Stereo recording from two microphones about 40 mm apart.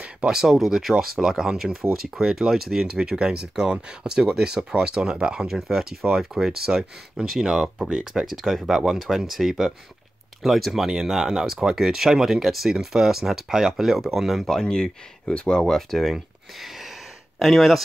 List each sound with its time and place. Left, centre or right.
0.3 s speech: centre
10.9 s speech: centre
14.4 s speech: centre
15.9 s speech: centre